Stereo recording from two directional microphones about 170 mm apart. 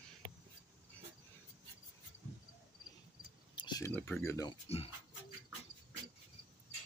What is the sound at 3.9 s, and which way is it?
Speech, 10° left (ahead or behind).